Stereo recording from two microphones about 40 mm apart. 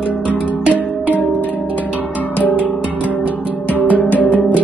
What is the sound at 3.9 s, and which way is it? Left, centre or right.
Music, left.